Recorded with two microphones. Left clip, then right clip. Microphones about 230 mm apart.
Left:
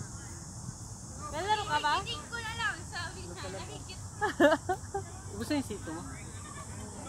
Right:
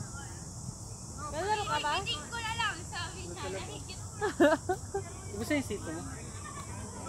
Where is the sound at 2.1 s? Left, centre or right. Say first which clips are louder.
Right 2 dB; centre.